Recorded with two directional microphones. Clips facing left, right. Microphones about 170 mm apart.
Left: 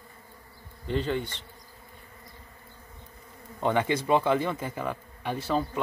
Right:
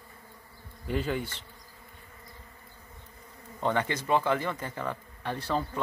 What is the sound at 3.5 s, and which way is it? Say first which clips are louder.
A man's voice: left 3 dB; 15° left (ahead or behind).